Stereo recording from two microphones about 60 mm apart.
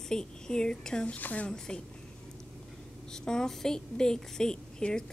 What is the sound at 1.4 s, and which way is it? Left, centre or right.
Speech, centre.